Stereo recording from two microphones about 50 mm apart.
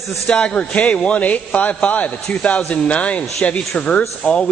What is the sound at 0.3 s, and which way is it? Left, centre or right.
A man's voice, centre.